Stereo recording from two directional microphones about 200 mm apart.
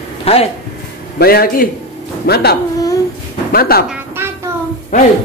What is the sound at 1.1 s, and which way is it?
A man's voice, 50° left (ahead or behind).